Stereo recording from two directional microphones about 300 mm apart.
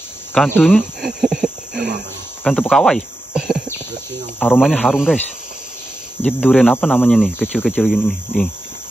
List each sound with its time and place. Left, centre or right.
0.3 s a sound: centre
2.4 s cricket: centre
4.4 s speech: centre
6.2 s speech: centre